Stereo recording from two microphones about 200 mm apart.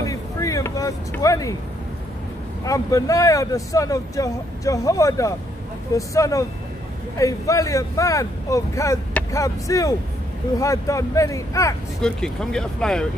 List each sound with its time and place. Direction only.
0.1 s vehicle: 15° left (ahead or behind)
2.6 s speech: 15° left (ahead or behind)
12.0 s speech: 5° left (ahead or behind)